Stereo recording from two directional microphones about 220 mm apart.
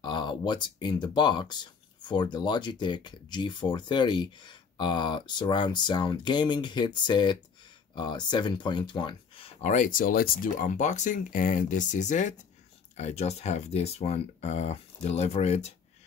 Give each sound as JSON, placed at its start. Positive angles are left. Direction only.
{"t": 0.0, "sound": "speech", "side_deg": 20}
{"t": 9.6, "sound": "speech", "side_deg": 35}